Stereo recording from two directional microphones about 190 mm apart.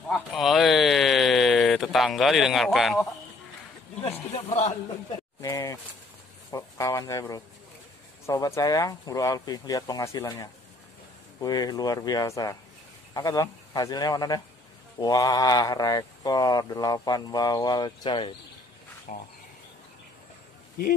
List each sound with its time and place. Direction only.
0.1 s a sound: centre (ahead or behind)
4.0 s speech: 30° left (ahead or behind)
5.4 s speech: 15° left (ahead or behind)
19.1 s speech: 45° left (ahead or behind)